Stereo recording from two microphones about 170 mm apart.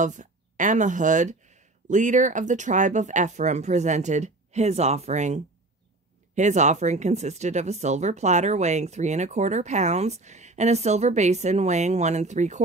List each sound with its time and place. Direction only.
0.0 s speech: 45° right (ahead or behind)